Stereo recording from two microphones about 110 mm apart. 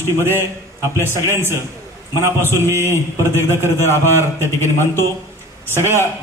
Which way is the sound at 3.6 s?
25° right (ahead or behind).